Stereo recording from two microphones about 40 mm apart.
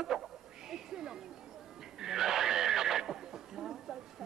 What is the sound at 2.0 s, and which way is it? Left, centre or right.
Neigh, centre.